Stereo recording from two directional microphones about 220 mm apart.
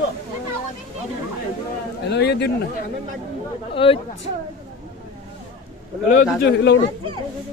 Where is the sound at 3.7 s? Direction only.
25° left (ahead or behind).